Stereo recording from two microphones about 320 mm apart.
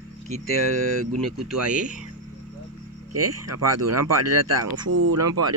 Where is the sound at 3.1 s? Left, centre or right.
Right.